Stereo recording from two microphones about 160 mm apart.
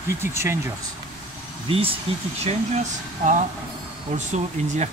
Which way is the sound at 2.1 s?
35° right (ahead or behind).